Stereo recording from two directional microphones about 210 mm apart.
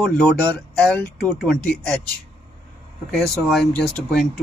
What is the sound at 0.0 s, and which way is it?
Speech, 5° left (ahead or behind).